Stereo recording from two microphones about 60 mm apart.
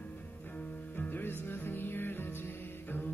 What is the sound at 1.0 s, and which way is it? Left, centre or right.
Music, left.